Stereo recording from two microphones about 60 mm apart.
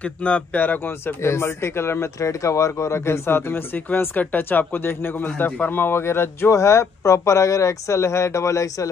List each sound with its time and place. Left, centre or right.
0.0 s speech: left
2.1 s speech: left
6.5 s speech: left